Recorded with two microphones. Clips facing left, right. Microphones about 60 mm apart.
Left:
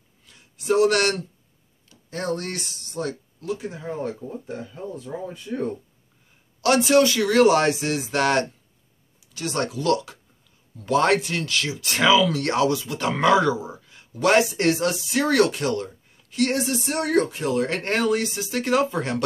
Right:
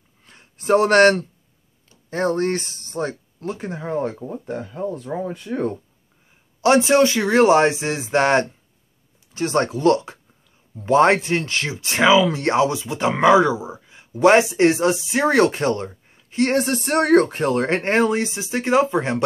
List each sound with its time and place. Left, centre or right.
0.2 s a sound: right
1.9 s speech: right
6.6 s speech: right
16.6 s speech: right